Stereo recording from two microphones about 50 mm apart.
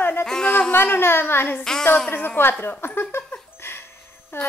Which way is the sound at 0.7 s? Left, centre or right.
Left.